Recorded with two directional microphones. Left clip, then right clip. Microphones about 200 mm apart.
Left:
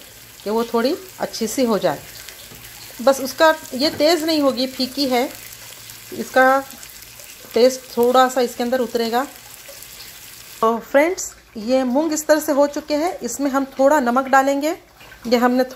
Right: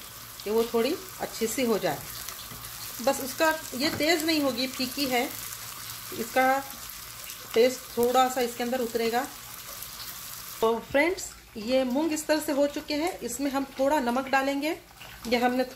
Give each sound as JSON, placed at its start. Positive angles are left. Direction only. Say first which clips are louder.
{"t": 0.5, "sound": "frying", "louder": "left 6 dB", "side_deg": 25}
{"t": 3.1, "sound": "frying", "louder": "left 11 dB", "side_deg": 25}
{"t": 6.3, "sound": "frying", "louder": "left 10 dB", "side_deg": 25}
{"t": 10.6, "sound": "speech", "louder": "left 8 dB", "side_deg": 15}
{"t": 11.6, "sound": "frying", "louder": "left 8 dB", "side_deg": 20}
{"t": 12.3, "sound": "speech", "louder": "left 11 dB", "side_deg": 15}
{"t": 13.0, "sound": "frying", "louder": "left 8 dB", "side_deg": 20}